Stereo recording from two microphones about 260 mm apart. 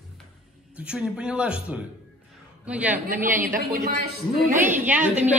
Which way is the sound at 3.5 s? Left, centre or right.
Right.